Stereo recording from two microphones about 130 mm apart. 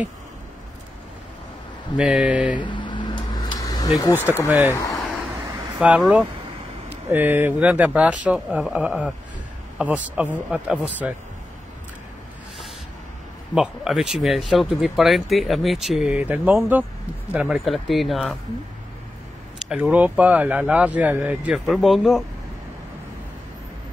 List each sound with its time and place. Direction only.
2.0 s speech: 5° right (ahead or behind)
2.6 s a sound: 40° left (ahead or behind)
4.5 s speech: 15° right (ahead or behind)
5.8 s speech: 5° right (ahead or behind)
13.6 s speech: 5° right (ahead or behind)
19.7 s speech: 10° right (ahead or behind)